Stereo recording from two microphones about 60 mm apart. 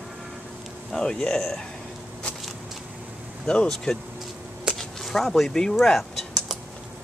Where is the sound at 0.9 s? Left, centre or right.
Centre.